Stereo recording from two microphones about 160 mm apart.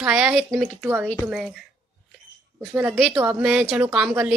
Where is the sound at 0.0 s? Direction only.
5° right (ahead or behind).